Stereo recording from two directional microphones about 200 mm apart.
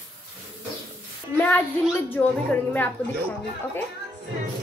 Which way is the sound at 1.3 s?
10° left (ahead or behind).